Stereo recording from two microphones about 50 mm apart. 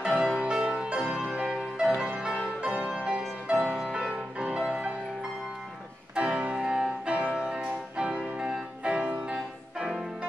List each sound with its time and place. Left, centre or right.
0.0 s music: centre
6.1 s music: right